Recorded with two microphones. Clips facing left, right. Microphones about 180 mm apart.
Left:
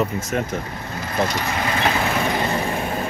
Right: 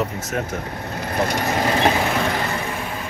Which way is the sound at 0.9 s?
60° right (ahead or behind).